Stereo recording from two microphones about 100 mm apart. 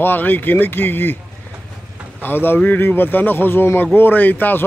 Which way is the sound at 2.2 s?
20° left (ahead or behind).